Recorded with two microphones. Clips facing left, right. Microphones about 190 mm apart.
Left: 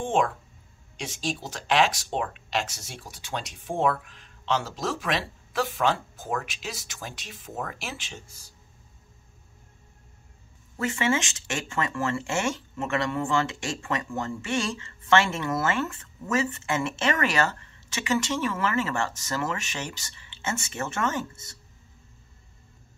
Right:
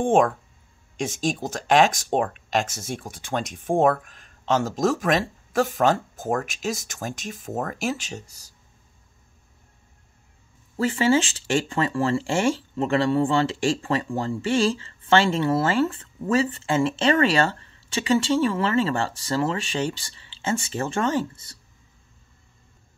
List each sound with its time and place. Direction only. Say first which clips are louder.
0.0 s speech: right 6 dB; 50° right (ahead or behind)
10.8 s speech: right 6 dB; 30° right (ahead or behind)